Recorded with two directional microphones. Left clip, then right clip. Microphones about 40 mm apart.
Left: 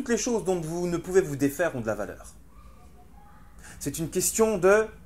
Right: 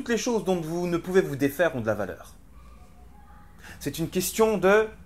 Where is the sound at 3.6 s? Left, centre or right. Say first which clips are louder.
Right 1 dB; left.